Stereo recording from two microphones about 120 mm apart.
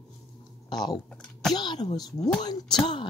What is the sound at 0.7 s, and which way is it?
Speech, 35° left (ahead or behind).